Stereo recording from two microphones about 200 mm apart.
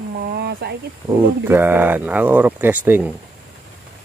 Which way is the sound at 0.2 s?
55° right (ahead or behind).